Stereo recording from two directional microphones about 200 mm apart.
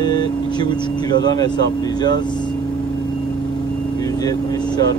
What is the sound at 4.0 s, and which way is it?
Speech, 20° left (ahead or behind).